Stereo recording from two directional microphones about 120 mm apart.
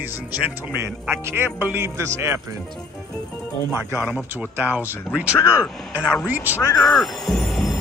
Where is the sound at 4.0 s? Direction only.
10° right (ahead or behind).